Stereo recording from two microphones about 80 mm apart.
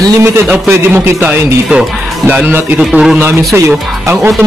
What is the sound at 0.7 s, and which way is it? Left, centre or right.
Speech, right.